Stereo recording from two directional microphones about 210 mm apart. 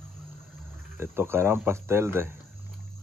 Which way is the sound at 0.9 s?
10° right (ahead or behind).